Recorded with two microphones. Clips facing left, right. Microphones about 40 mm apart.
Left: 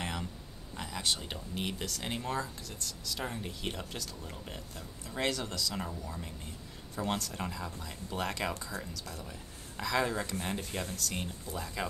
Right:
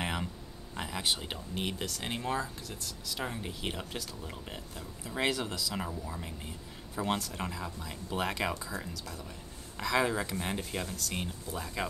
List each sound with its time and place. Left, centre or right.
0.0 s a sound: right
0.7 s speech: centre
9.8 s speech: centre